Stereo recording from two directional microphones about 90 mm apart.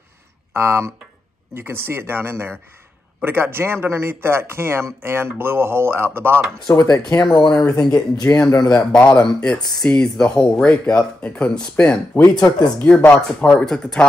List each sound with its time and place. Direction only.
0.5 s speech: 30° right (ahead or behind)
6.7 s speech: 40° left (ahead or behind)
7.3 s speech: 60° left (ahead or behind)
7.9 s speech: 40° left (ahead or behind)
8.9 s speech: 10° left (ahead or behind)
12.2 s speech: 45° left (ahead or behind)
12.7 s speech: 15° left (ahead or behind)